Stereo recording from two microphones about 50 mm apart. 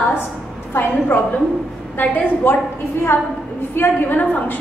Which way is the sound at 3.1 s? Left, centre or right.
Left.